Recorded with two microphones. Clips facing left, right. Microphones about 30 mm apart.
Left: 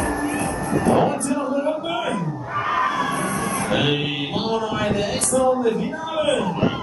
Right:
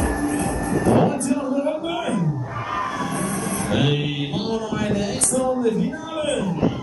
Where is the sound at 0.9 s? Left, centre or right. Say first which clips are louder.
Even; centre.